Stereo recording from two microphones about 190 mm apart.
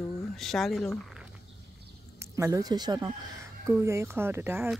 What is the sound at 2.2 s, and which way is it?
Speech, 15° right (ahead or behind).